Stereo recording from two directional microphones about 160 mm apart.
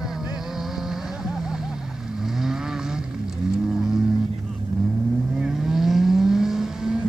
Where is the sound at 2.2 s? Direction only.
Centre (ahead or behind).